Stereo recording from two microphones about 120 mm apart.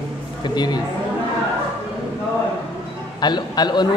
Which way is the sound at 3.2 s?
35° left (ahead or behind).